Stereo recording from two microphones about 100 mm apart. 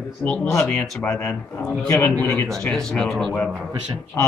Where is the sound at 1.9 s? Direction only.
20° left (ahead or behind).